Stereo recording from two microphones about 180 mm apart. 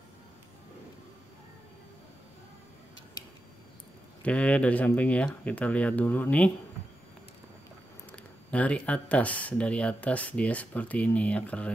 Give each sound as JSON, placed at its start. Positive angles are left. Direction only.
{"t": 4.2, "sound": "speech", "side_deg": 5}
{"t": 8.5, "sound": "speech", "side_deg": 5}